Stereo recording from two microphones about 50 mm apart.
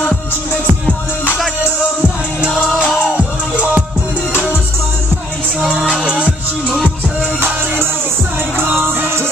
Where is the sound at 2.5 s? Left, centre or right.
Centre.